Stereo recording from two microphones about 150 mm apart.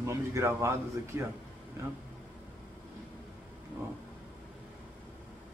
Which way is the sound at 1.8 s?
20° right (ahead or behind).